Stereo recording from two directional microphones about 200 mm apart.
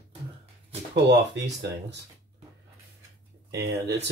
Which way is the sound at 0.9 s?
60° right (ahead or behind).